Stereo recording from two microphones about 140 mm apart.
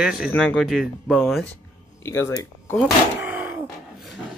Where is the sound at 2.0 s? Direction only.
20° left (ahead or behind).